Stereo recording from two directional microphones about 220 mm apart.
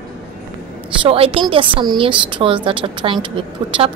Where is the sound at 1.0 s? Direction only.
25° right (ahead or behind).